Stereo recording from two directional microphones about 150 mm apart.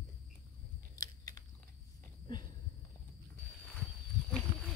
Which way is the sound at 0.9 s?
25° left (ahead or behind).